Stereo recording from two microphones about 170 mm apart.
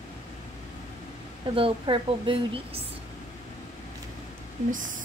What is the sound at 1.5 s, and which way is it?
A woman's voice, 30° right (ahead or behind).